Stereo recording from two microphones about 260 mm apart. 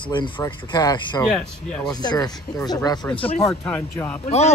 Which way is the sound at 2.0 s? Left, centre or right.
Centre.